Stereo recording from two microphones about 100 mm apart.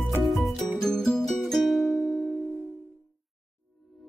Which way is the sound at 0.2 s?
Centre (ahead or behind).